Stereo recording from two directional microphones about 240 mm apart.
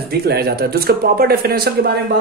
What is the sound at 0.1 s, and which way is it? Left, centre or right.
Speech, right.